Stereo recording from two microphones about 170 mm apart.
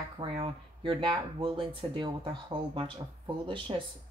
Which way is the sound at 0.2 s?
30° right (ahead or behind).